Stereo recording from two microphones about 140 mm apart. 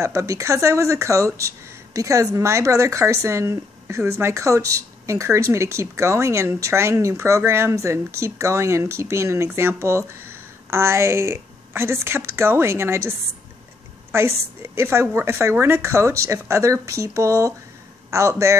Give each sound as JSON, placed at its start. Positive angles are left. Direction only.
{"t": 0.0, "sound": "a woman's voice", "side_deg": -20}
{"t": 14.6, "sound": "speech", "side_deg": -20}